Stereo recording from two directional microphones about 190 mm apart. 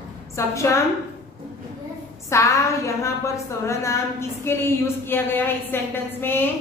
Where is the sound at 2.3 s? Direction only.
15° left (ahead or behind).